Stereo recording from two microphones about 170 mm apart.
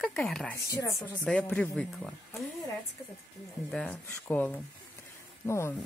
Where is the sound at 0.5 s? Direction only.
15° left (ahead or behind).